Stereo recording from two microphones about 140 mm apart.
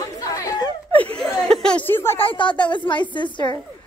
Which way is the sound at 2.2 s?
35° left (ahead or behind).